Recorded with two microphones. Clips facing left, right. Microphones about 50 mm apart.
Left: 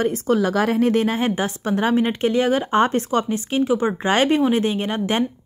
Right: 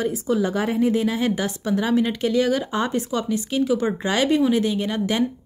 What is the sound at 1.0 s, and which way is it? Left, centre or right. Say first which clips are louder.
A woman's voice: left 1 dB; left.